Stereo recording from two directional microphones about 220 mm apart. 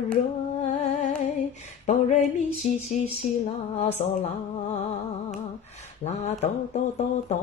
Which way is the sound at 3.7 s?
30° left (ahead or behind).